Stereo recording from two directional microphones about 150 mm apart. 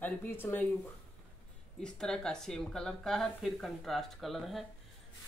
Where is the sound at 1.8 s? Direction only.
5° left (ahead or behind).